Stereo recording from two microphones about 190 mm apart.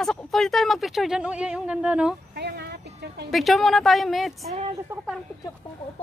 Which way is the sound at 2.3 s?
60° right (ahead or behind).